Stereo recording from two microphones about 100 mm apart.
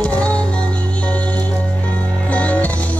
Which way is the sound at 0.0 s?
10° left (ahead or behind).